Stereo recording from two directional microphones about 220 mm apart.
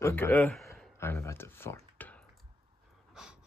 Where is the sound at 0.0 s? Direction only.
10° left (ahead or behind).